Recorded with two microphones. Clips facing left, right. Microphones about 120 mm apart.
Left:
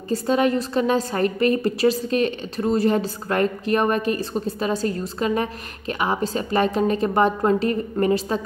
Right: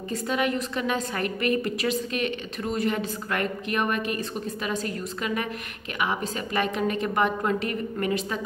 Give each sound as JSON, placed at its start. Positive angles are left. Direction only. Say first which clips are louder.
{"t": 0.1, "sound": "a woman's voice", "louder": "left 7 dB", "side_deg": 35}